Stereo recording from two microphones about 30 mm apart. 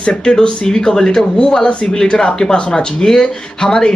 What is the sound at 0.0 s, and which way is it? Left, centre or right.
Speech, left.